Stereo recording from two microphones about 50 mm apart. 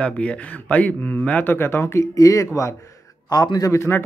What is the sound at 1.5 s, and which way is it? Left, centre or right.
Speech, left.